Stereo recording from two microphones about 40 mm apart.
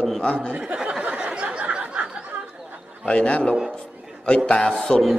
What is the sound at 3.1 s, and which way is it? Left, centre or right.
Speech, left.